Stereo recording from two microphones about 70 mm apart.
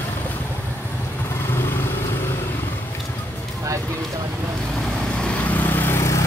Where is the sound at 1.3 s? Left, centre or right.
Left.